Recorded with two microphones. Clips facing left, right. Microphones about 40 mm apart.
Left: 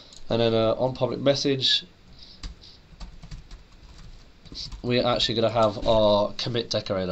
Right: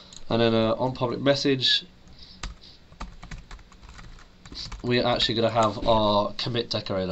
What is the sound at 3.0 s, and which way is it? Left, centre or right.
Computer keyboard, right.